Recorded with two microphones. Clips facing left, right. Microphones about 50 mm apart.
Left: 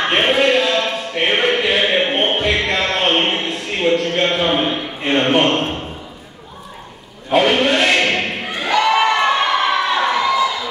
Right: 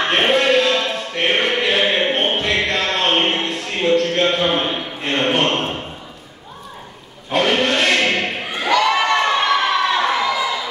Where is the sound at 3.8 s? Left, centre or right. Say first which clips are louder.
Even; centre.